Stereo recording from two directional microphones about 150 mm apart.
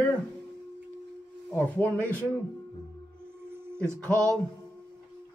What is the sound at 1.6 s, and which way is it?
Speech, 10° left (ahead or behind).